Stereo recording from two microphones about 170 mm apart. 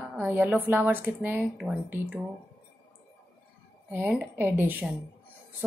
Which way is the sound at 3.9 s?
10° right (ahead or behind).